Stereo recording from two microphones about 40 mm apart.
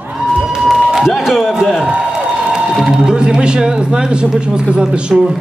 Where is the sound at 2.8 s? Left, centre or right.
Centre.